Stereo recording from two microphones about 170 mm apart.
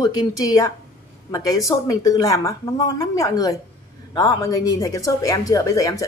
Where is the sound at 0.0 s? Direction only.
20° left (ahead or behind).